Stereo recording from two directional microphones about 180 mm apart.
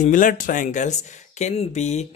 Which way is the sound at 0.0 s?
45° left (ahead or behind).